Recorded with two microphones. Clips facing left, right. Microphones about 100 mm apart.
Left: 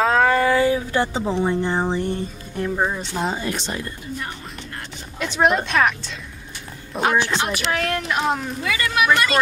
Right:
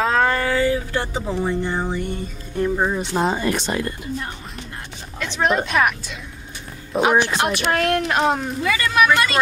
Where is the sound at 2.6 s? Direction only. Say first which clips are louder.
Right 2 dB; centre (ahead or behind).